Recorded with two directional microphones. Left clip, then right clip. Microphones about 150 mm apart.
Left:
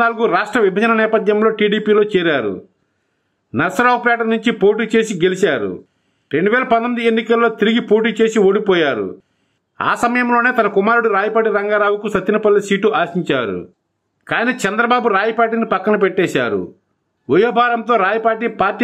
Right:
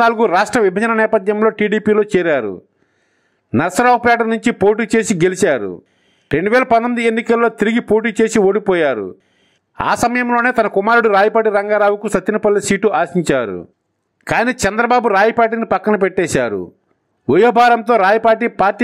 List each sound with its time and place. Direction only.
0.0 s a man's voice: 45° right (ahead or behind)
3.5 s a man's voice: 40° right (ahead or behind)